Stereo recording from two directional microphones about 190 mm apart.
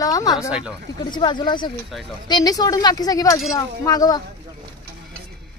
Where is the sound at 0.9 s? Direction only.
25° left (ahead or behind).